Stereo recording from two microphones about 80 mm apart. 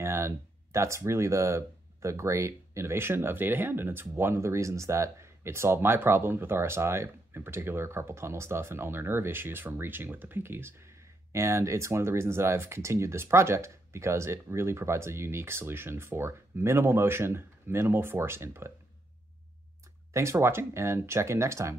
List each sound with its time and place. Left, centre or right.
0.0 s speech: right
20.1 s speech: right